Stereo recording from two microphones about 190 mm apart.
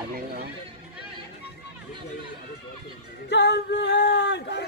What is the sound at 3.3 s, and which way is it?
Singing, 60° left (ahead or behind).